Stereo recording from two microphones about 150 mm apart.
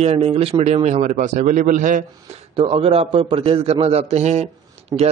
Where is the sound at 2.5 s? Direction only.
40° right (ahead or behind).